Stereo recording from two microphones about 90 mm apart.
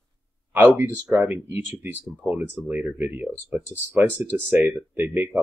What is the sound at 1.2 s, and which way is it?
Speech, 25° right (ahead or behind).